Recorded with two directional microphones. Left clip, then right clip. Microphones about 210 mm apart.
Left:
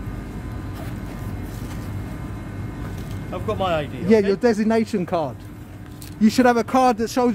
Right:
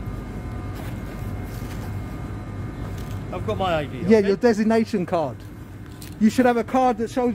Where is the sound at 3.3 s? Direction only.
5° left (ahead or behind).